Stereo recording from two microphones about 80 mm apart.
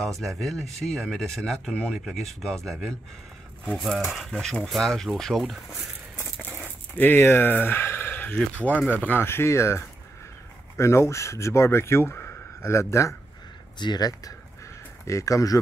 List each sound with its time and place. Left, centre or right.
0.0 s speech: centre
6.6 s speech: left
13.7 s speech: left
14.6 s a sound: left